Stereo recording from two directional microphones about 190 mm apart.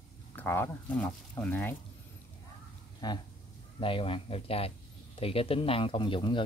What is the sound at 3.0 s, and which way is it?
Speech, 20° left (ahead or behind).